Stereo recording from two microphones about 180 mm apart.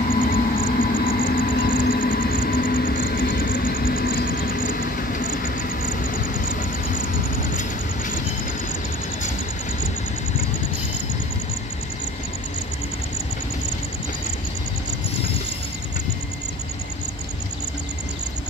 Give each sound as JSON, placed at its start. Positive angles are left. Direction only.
{"t": 0.0, "sound": "vehicle", "side_deg": 50}